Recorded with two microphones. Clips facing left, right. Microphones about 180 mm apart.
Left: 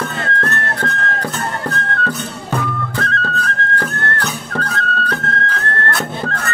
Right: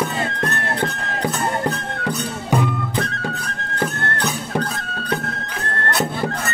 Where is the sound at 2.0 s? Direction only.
15° right (ahead or behind).